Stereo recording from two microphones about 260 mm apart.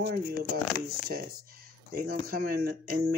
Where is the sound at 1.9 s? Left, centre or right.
Right.